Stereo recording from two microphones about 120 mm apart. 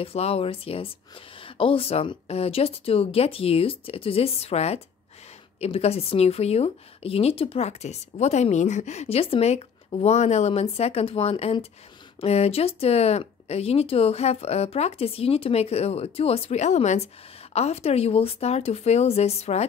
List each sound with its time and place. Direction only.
0.0 s speech: 55° left (ahead or behind)